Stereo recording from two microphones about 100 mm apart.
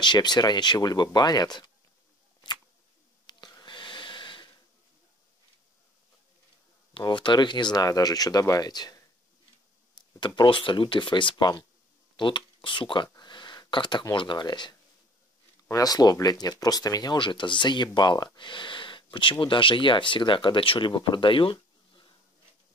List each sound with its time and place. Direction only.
0.0 s speech: 45° left (ahead or behind)
3.3 s wheeze: 45° left (ahead or behind)
7.0 s speech: 50° left (ahead or behind)
9.9 s speech: 50° left (ahead or behind)
13.1 s a sound: 45° left (ahead or behind)
14.1 s speech: 50° left (ahead or behind)